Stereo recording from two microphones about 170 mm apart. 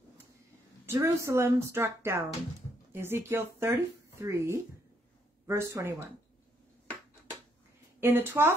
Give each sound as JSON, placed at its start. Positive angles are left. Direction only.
{"t": 0.8, "sound": "speech", "side_deg": -15}
{"t": 8.0, "sound": "speech", "side_deg": -15}